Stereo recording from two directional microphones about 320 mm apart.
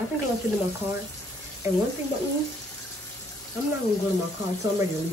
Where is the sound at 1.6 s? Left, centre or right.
Centre.